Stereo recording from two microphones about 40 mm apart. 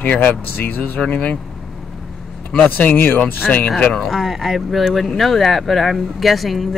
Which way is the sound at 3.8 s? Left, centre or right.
Centre.